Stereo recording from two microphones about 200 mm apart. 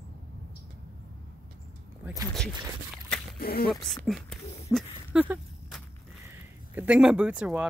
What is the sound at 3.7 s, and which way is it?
Speech, centre (ahead or behind).